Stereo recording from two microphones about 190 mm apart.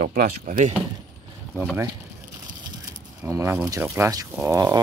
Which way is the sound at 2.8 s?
15° right (ahead or behind).